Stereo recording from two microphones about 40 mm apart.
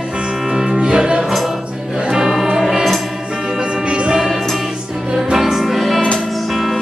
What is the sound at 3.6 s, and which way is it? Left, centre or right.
Music, right.